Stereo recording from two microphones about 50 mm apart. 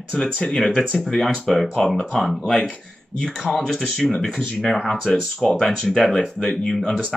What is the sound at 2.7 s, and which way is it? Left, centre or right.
Speech, centre.